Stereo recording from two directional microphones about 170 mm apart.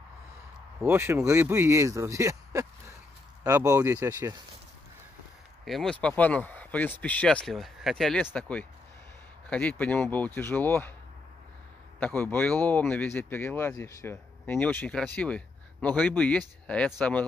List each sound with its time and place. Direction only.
0.8 s speech: 15° right (ahead or behind)
5.7 s speech: 5° left (ahead or behind)
12.0 s speech: 10° left (ahead or behind)